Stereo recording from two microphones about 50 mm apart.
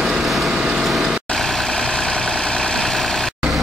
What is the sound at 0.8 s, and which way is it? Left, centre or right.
Vehicle, centre.